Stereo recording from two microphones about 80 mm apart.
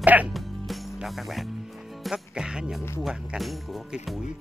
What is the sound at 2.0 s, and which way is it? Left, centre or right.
Speech, centre.